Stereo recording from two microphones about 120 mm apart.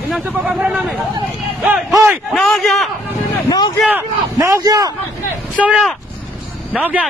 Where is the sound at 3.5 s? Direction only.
35° left (ahead or behind).